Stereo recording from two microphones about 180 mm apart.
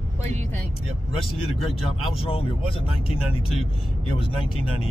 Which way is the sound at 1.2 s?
30° left (ahead or behind).